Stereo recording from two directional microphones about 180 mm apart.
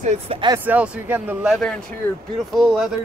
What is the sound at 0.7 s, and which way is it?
Speech, 10° right (ahead or behind).